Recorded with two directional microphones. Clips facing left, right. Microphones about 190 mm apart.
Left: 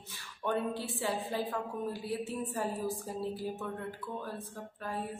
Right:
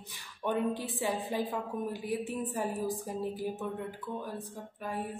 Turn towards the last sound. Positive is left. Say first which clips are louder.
# right 2 dB
turn(degrees=-15)  # may be behind; listen again after turning